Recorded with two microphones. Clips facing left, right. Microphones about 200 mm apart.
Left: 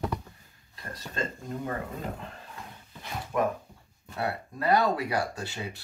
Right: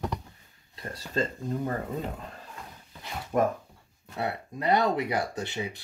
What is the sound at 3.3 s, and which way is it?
Speech, 40° right (ahead or behind).